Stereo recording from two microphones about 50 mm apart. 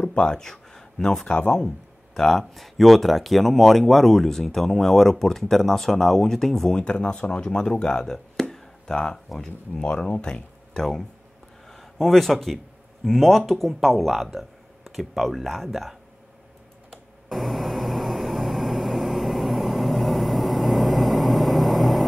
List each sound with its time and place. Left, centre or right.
0.0 s speech: centre
1.3 s speech: left
2.1 s speech: centre
6.8 s speech: centre
16.9 s a sound: centre